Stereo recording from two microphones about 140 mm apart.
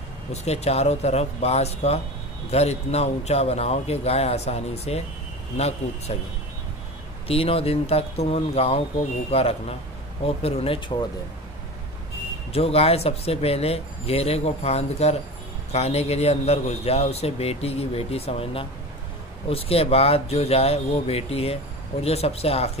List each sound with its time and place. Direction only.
0.3 s a man's voice: 50° left (ahead or behind)
7.2 s a man's voice: 45° left (ahead or behind)
12.5 s a man's voice: 45° left (ahead or behind)